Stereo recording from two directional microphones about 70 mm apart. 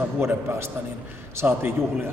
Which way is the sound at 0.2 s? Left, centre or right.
Right.